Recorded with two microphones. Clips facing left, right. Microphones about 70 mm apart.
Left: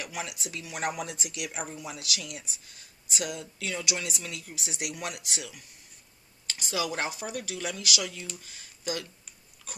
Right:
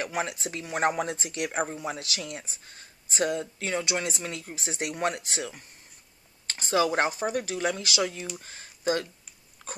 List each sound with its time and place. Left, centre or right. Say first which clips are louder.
0.0 s speech: right 6 dB; right
9.6 s dog: right 6 dB; right